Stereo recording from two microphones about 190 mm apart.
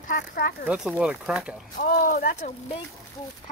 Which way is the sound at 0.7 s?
5° right (ahead or behind).